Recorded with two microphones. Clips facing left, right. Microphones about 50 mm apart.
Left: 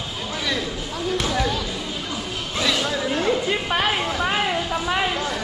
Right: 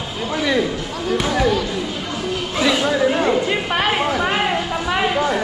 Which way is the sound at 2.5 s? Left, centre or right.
Centre.